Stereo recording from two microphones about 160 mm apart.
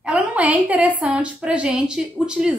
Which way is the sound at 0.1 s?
10° right (ahead or behind).